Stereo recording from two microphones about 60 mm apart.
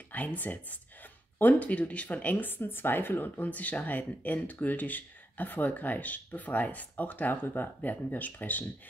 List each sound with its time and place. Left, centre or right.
0.1 s speech: left